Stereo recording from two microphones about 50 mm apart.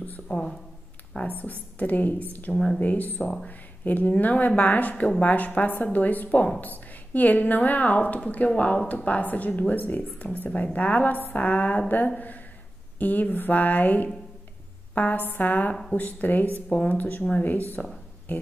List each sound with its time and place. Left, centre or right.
0.3 s speech: centre
1.3 s a woman's voice: left
2.5 s speech: centre
2.8 s a woman's voice: left
13.0 s a woman's voice: left